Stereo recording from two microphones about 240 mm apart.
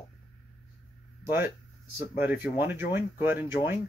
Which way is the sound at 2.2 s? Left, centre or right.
Centre.